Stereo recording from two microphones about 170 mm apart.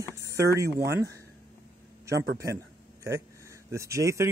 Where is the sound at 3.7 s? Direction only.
15° right (ahead or behind).